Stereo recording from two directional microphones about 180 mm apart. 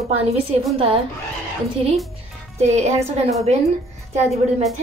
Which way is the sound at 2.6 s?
40° right (ahead or behind).